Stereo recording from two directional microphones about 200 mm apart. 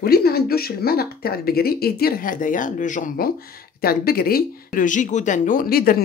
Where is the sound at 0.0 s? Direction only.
50° left (ahead or behind).